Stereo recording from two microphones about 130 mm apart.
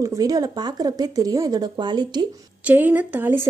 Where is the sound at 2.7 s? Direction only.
15° right (ahead or behind).